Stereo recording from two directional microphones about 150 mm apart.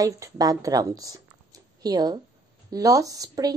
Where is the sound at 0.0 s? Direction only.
25° right (ahead or behind).